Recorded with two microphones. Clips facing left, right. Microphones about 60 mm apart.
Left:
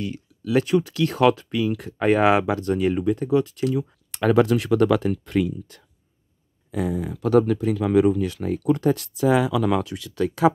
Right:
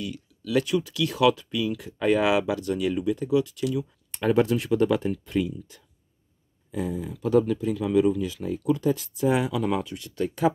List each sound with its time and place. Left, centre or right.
0.0 s speech: left
4.1 s speech: left
5.2 s speech: left
6.7 s speech: left